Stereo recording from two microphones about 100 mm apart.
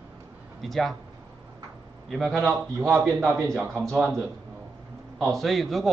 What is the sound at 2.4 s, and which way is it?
Speech, 20° right (ahead or behind).